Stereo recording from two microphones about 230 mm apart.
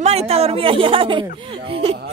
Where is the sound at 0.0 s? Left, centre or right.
Right.